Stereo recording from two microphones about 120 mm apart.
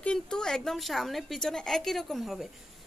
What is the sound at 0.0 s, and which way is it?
A woman's voice, 5° left (ahead or behind).